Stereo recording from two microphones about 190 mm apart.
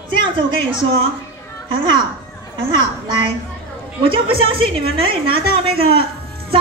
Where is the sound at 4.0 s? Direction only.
25° right (ahead or behind).